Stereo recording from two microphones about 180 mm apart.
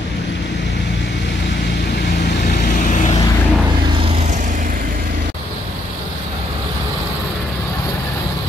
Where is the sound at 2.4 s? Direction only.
45° left (ahead or behind).